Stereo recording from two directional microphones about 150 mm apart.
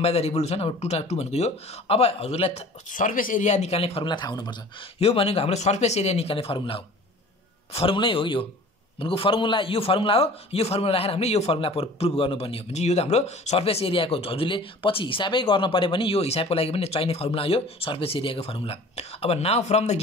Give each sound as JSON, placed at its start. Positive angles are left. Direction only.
{"t": 0.0, "sound": "speech", "side_deg": 40}
{"t": 2.9, "sound": "speech", "side_deg": 65}
{"t": 4.9, "sound": "a man's voice", "side_deg": 40}